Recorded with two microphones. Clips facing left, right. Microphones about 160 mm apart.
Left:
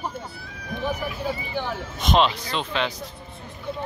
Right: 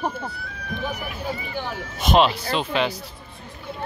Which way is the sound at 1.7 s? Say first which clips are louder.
Right 3 dB; 5° right (ahead or behind).